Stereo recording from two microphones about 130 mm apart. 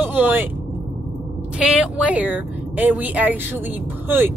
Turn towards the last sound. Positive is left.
turn(degrees=-15)  # may be behind; listen again after turning